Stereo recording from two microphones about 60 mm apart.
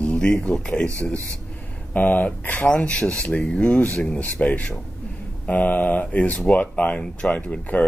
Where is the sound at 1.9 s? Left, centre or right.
Left.